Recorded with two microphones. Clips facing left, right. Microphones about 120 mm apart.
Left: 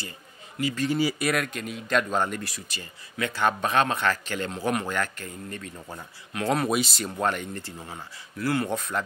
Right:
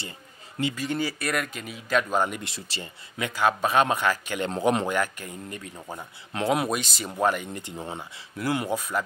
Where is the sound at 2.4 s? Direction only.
30° right (ahead or behind).